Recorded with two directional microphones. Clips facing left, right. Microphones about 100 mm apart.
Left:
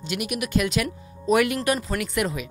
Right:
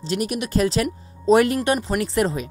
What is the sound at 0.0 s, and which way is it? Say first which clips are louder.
Speech: right 4 dB; 35° right (ahead or behind).